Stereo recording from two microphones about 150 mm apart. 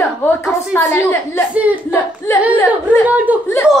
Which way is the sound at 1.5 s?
10° right (ahead or behind).